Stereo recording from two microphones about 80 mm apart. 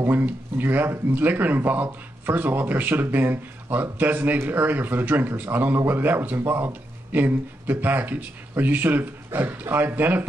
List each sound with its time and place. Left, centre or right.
0.0 s speech: right